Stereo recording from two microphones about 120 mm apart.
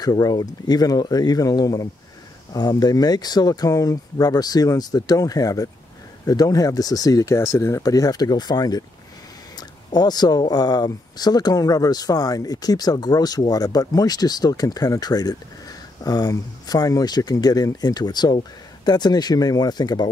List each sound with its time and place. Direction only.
0.0 s speech: 35° left (ahead or behind)